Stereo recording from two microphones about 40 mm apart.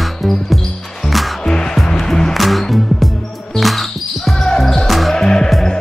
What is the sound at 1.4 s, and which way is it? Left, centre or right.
Music, left.